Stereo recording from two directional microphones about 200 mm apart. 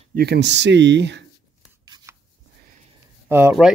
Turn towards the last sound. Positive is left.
turn(degrees=-5)  # may be behind; listen again after turning